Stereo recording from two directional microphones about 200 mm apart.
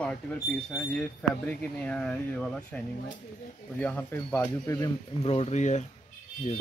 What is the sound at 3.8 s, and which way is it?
Speech, 10° left (ahead or behind).